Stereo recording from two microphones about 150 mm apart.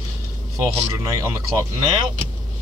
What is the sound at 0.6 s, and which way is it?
Speech, 20° right (ahead or behind).